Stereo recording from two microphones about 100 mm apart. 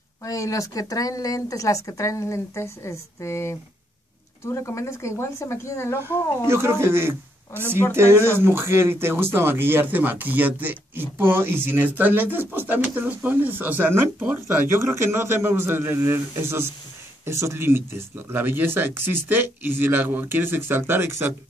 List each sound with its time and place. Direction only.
0.2 s speech: 35° left (ahead or behind)
4.6 s speech: 30° left (ahead or behind)
6.4 s speech: 25° right (ahead or behind)